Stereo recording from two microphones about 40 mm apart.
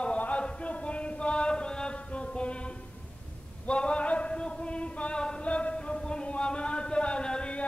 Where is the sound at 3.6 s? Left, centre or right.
Left.